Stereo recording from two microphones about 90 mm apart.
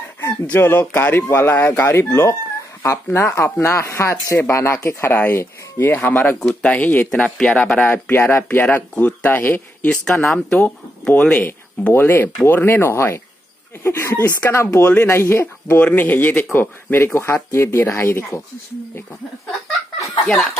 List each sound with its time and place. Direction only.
0.2 s speech: 25° left (ahead or behind)
1.5 s speech: 20° left (ahead or behind)
8.1 s speech: 20° left (ahead or behind)
11.4 s speech: 25° left (ahead or behind)